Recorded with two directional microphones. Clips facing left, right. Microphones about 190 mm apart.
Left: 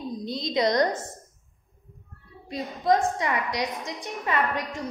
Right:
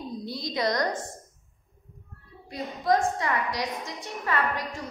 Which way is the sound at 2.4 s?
20° left (ahead or behind).